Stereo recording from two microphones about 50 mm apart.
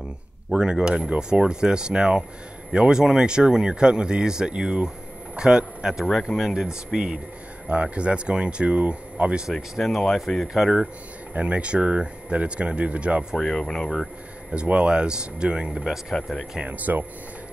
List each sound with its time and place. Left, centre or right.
0.5 s speech: centre
6.0 s speech: centre
7.6 s speech: right
9.8 s speech: centre
10.5 s speech: centre
11.3 s speech: right
13.4 s speech: centre
14.5 s speech: right
15.8 s speech: centre
16.5 s speech: right